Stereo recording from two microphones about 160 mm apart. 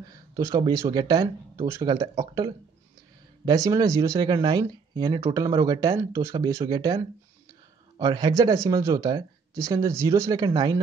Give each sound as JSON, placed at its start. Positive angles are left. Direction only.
{"t": 0.4, "sound": "speech", "side_deg": -20}
{"t": 8.0, "sound": "speech", "side_deg": -25}